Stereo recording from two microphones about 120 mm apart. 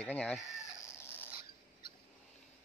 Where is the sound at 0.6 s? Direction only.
20° left (ahead or behind).